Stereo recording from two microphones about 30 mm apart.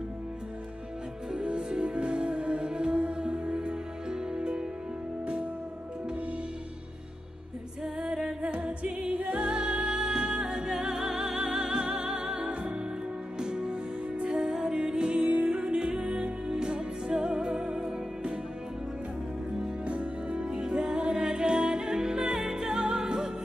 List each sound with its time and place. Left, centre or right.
1.5 s music: right
7.8 s music: right
8.4 s singing: right
8.6 s music: right
9.1 s music: right
9.4 s music: right
9.9 s music: right
11.6 s music: right
14.7 s music: right
15.2 s music: right
15.5 s music: right
19.8 s music: right
20.5 s music: right